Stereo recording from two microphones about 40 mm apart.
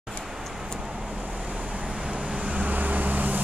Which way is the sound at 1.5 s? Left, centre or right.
Right.